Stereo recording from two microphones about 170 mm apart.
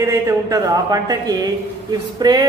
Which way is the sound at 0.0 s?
15° right (ahead or behind).